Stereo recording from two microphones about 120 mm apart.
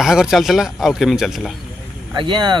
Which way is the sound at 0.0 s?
5° right (ahead or behind).